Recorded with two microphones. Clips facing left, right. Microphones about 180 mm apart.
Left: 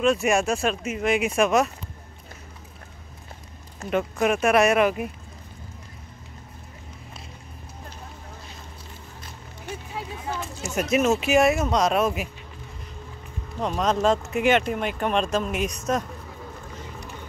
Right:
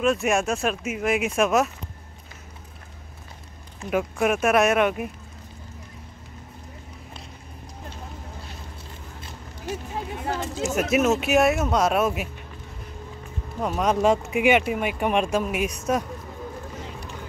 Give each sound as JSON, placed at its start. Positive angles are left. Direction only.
{"t": 0.0, "sound": "speech", "side_deg": 0}
{"t": 3.9, "sound": "speech", "side_deg": -5}
{"t": 10.2, "sound": "a sound", "side_deg": -65}
{"t": 10.6, "sound": "speech", "side_deg": -5}
{"t": 13.6, "sound": "speech", "side_deg": -5}